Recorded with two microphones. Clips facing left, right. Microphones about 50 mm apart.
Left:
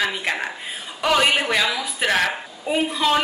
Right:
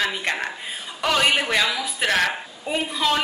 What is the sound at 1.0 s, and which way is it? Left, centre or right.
A woman's voice, centre.